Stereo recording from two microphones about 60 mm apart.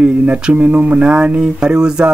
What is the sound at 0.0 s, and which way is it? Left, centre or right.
Speech, right.